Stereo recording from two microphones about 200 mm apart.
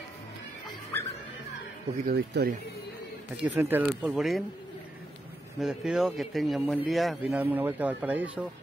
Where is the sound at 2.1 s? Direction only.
50° right (ahead or behind).